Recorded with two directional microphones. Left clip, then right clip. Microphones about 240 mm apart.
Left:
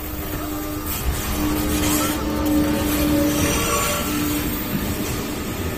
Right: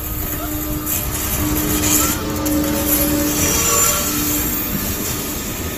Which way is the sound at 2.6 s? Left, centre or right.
Right.